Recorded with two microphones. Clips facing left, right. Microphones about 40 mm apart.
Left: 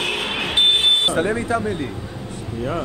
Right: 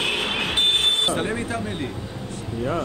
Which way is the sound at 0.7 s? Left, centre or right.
Left.